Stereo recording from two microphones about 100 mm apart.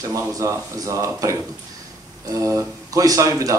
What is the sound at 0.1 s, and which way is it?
A man's voice, 35° right (ahead or behind).